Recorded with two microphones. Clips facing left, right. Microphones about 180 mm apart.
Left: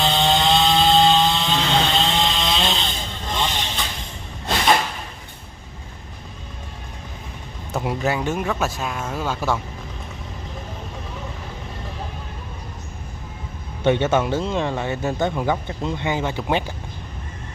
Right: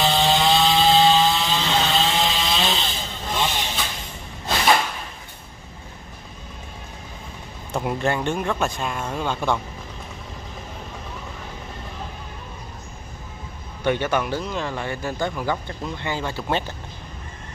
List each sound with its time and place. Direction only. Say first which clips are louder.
0.0 s chainsaw: even; centre (ahead or behind)
3.3 s vehicle: even; 5° right (ahead or behind)
7.7 s speech: even; 5° left (ahead or behind)
13.8 s speech: left 4 dB; 25° left (ahead or behind)